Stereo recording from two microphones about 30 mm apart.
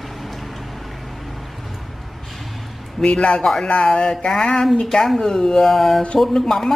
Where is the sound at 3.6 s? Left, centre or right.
Left.